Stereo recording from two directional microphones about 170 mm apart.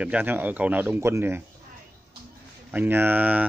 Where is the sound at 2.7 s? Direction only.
10° right (ahead or behind).